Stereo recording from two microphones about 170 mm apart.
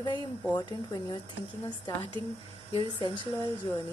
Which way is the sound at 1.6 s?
25° left (ahead or behind).